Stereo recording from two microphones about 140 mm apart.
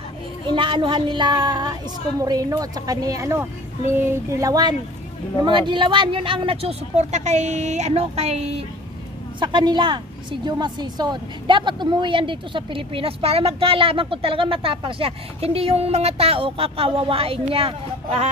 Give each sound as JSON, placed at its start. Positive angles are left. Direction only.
{"t": 0.5, "sound": "a woman's voice", "side_deg": -35}
{"t": 9.4, "sound": "a woman's voice", "side_deg": -35}